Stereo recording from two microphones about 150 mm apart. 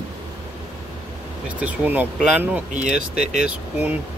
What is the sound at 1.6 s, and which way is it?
Speech, 10° right (ahead or behind).